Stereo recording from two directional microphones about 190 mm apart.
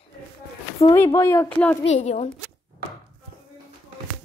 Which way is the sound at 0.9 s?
15° left (ahead or behind).